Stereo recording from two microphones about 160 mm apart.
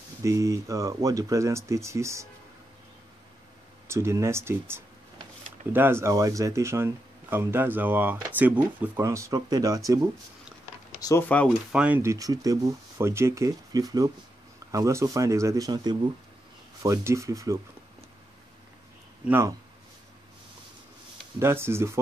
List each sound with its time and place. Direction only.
0.2 s speech: 20° right (ahead or behind)
3.8 s speech: 15° right (ahead or behind)
11.0 s speech: 20° left (ahead or behind)
11.7 s speech: 5° right (ahead or behind)
12.0 s speech: 20° right (ahead or behind)
19.2 s speech: 15° right (ahead or behind)
21.4 s speech: 15° right (ahead or behind)